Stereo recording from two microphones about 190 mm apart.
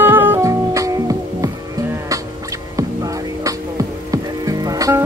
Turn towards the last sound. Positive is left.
turn(degrees=-20)  # may be behind; listen again after turning